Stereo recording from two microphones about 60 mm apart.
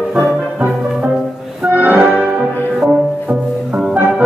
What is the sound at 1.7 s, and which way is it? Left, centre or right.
Music, right.